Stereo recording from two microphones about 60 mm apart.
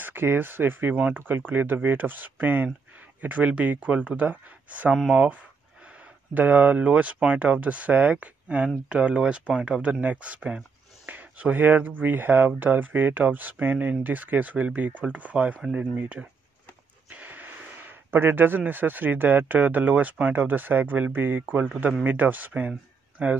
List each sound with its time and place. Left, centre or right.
0.0 s speech: right
6.3 s speech: right
17.1 s a sound: right
18.1 s speech: right